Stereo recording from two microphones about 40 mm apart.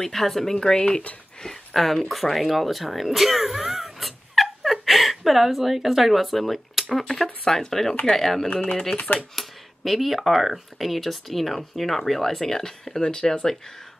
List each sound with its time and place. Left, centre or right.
0.0 s speech: centre
7.4 s speech: centre
8.5 s speech: left
9.3 s speech: centre